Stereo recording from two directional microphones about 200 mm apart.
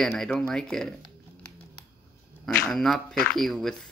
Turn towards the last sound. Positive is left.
turn(degrees=0)  # may be behind; listen again after turning